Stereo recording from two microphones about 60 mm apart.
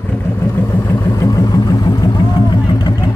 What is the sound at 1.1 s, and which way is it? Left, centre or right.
Vehicle, left.